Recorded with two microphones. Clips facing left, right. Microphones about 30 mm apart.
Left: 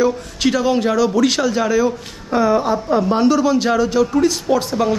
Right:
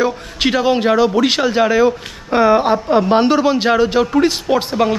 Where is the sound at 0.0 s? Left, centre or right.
Right.